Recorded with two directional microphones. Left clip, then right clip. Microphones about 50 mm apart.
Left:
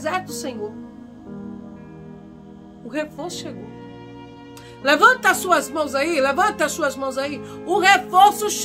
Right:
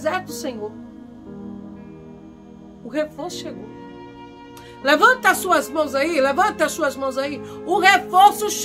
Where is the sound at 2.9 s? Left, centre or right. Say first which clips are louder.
Right 2 dB; left.